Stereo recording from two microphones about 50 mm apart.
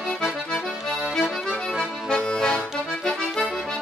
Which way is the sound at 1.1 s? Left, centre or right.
Centre.